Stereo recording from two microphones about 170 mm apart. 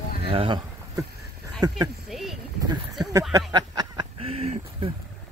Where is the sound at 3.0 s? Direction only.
20° right (ahead or behind).